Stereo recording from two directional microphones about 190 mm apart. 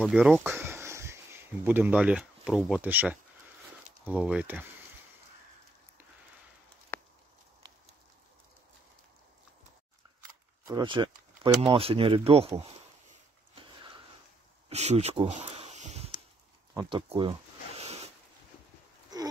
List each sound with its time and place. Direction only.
0.0 s speech: 5° right (ahead or behind)
6.9 s a sound: 10° left (ahead or behind)
10.7 s speech: 25° right (ahead or behind)
14.7 s a sound: 35° right (ahead or behind)
16.7 s zipper: 25° right (ahead or behind)
19.1 s wheeze: 20° right (ahead or behind)